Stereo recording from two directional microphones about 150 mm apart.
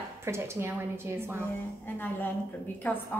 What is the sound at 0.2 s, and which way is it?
Speech, 15° right (ahead or behind).